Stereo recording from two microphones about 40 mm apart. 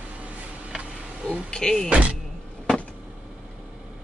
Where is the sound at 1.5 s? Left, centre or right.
Centre.